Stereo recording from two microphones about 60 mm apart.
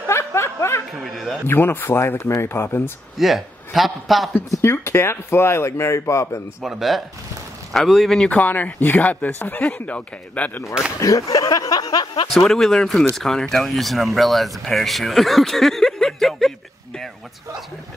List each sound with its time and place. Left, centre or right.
0.1 s a sound: left
0.9 s speech: centre
1.5 s speech: left
3.2 s speech: centre
4.6 s speech: left
6.6 s speech: centre
8.3 s speech: left
11.0 s speech: left
12.4 s speech: centre